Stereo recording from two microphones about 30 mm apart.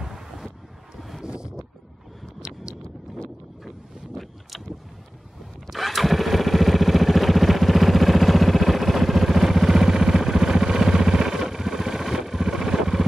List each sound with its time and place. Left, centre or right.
0.0 s wind noise: centre
0.9 s wind: centre
1.2 s boat: right
2.4 s a sound: right
4.1 s boat: centre
5.7 s motorcycle: centre